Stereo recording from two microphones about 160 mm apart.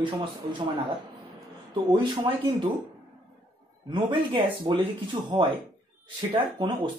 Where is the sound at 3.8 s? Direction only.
30° right (ahead or behind).